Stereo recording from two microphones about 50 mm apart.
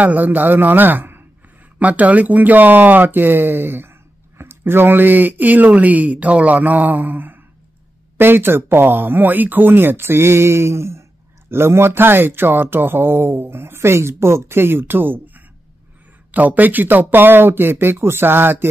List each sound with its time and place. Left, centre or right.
0.0 s speech: right
1.8 s speech: right
11.5 s speech: right